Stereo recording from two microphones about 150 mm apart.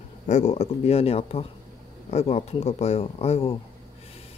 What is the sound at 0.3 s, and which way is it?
Speech, 50° left (ahead or behind).